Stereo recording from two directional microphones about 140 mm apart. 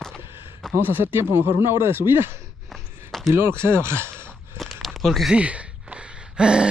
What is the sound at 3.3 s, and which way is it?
Speech, 15° right (ahead or behind).